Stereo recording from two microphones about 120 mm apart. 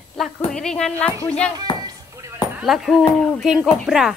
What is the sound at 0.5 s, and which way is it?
Speech, 5° left (ahead or behind).